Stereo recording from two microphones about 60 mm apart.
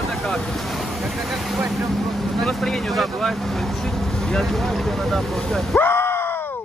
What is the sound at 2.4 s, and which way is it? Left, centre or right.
Speech, centre.